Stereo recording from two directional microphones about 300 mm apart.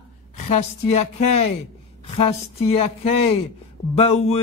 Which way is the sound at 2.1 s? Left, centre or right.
Centre.